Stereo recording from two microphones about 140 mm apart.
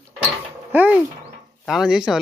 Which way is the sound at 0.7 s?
10° right (ahead or behind).